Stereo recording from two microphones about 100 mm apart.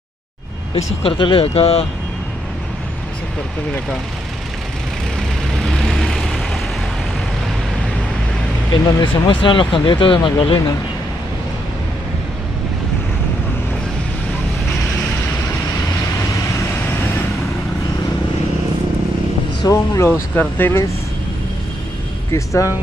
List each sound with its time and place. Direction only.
1.0 s speech: 60° left (ahead or behind); by 1.9 s 90° left
5.6 s vehicle: centre (ahead or behind)
9.0 s speech: 55° left (ahead or behind)
19.6 s speech: 30° left (ahead or behind)
20.1 s speech: 20° left (ahead or behind)
22.3 s speech: 30° left (ahead or behind)